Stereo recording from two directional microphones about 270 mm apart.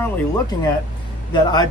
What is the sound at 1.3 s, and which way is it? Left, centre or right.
Speech, centre.